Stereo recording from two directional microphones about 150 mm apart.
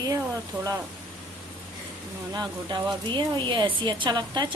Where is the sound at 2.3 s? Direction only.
30° right (ahead or behind).